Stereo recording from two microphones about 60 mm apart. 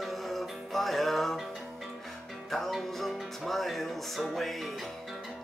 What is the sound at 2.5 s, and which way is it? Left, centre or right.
Music, centre.